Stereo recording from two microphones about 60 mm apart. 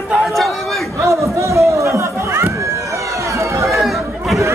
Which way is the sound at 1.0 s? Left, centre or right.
Right.